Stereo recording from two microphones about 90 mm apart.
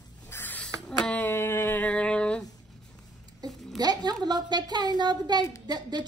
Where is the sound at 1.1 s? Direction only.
25° left (ahead or behind).